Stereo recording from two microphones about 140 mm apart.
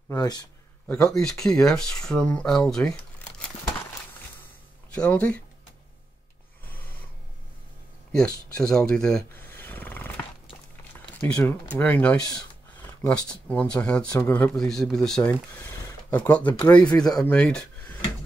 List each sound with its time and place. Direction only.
0.1 s speech: 25° left (ahead or behind)
0.8 s speech: 5° left (ahead or behind)
4.9 s speech: 10° left (ahead or behind)
8.1 s a sound: 5° left (ahead or behind)
11.1 s speech: 15° left (ahead or behind)
16.8 s speech: 30° left (ahead or behind)
17.3 s speech: 5° left (ahead or behind)